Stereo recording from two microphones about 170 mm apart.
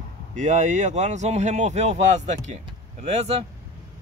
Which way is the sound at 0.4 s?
45° right (ahead or behind).